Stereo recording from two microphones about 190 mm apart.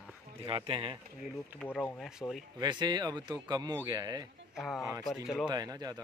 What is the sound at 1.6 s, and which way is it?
Speech, 10° left (ahead or behind).